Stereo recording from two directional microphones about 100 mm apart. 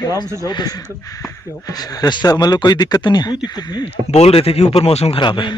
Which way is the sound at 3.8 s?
85° left.